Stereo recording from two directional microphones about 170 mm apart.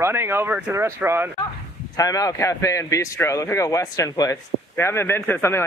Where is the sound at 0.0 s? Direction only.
15° right (ahead or behind).